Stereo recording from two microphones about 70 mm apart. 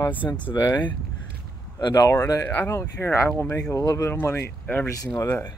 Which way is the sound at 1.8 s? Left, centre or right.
Left.